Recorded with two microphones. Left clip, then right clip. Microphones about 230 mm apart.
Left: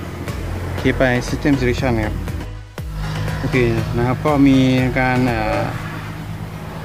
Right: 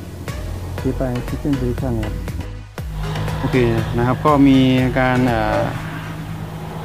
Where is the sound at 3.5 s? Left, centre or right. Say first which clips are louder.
Even; centre.